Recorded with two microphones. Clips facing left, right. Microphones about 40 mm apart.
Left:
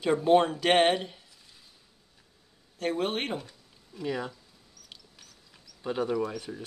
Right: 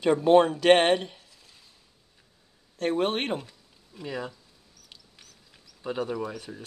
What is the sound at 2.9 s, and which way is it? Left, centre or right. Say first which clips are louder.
Speech: right 4 dB; centre.